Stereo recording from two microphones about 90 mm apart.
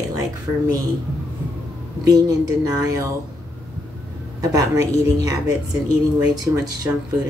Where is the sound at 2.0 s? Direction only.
40° right (ahead or behind).